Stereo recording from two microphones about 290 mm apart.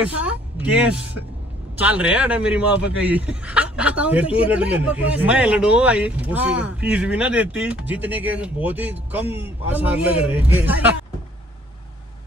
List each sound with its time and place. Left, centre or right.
0.0 s speech: centre